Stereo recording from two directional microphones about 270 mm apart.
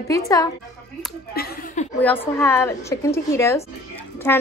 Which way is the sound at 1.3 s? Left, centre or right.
Left.